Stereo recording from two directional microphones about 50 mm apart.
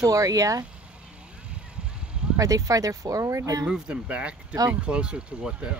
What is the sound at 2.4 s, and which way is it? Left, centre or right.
Speech, right.